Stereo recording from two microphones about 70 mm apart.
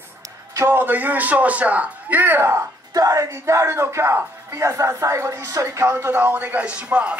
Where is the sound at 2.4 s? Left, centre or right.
Right.